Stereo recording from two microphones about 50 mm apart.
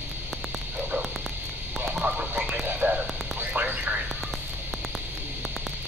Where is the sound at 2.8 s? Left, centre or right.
Right.